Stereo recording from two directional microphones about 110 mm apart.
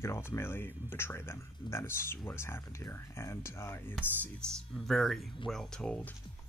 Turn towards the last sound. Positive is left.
turn(degrees=5)  # may be behind; listen again after turning